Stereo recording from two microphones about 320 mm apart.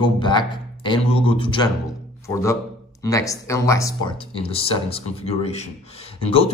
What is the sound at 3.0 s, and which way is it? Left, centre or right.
A man's voice, centre.